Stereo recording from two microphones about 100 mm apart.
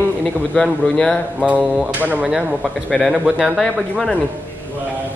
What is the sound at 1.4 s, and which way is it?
Mantra, 10° right (ahead or behind).